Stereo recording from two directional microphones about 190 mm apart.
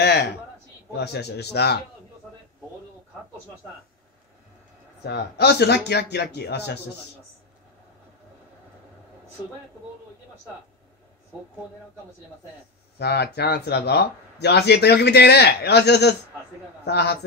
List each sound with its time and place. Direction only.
0.9 s speech: 60° left (ahead or behind)
5.0 s speech: 60° left (ahead or behind)
13.0 s speech: 60° left (ahead or behind)